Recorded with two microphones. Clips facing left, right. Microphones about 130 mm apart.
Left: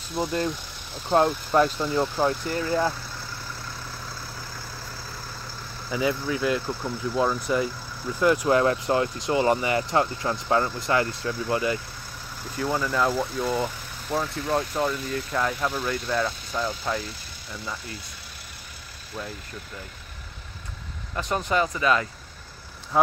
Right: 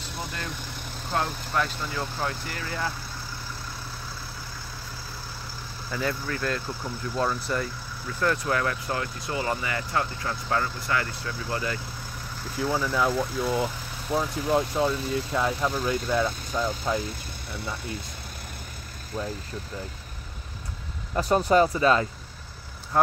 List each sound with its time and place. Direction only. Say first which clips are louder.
1.1 s speech: left 8 dB; 30° left (ahead or behind)
5.9 s speech: left 4 dB; 10° left (ahead or behind)
12.5 s speech: left 1 dB; 5° right (ahead or behind)
21.2 s speech: right 5 dB; 35° right (ahead or behind)
22.9 s speech: left 1 dB; 5° left (ahead or behind)